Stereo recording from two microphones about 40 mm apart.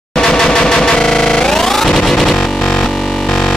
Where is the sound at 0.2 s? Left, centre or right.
Centre.